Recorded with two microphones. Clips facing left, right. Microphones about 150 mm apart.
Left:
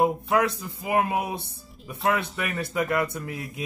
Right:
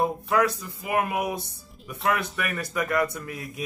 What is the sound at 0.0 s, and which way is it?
Speech, 25° left (ahead or behind).